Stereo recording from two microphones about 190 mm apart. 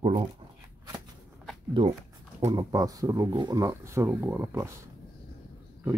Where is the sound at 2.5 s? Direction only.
20° right (ahead or behind).